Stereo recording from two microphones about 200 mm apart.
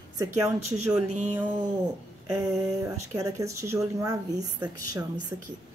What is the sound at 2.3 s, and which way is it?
Speech, 15° right (ahead or behind).